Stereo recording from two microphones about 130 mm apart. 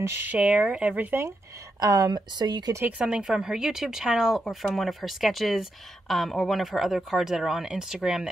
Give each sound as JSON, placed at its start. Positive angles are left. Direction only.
{"t": 0.0, "sound": "speech", "side_deg": -15}
{"t": 1.8, "sound": "speech", "side_deg": -30}
{"t": 2.8, "sound": "speech", "side_deg": -10}